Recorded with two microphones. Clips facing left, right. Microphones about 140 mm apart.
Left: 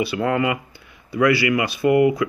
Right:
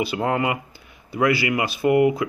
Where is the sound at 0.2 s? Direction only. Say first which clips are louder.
Left 2 dB; 25° right (ahead or behind).